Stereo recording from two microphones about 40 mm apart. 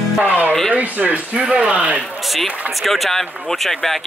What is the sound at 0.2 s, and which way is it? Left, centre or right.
Music, right.